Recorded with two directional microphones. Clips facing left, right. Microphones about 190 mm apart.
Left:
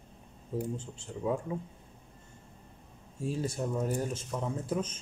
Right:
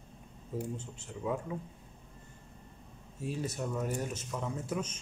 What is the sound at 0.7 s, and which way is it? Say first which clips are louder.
Speech: left 3 dB; 30° left (ahead or behind).